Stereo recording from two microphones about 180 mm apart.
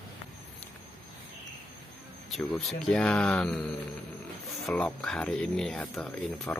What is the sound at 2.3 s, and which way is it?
Speech, centre (ahead or behind).